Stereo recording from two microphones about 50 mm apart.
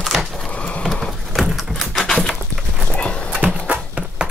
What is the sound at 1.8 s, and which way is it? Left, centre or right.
Patter, centre.